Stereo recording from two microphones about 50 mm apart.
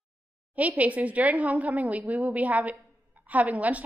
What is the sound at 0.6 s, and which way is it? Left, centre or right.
A woman's voice, right.